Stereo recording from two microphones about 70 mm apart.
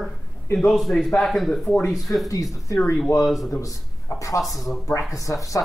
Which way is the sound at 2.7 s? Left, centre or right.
Left.